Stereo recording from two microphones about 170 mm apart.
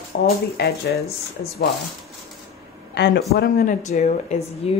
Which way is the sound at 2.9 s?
90° left.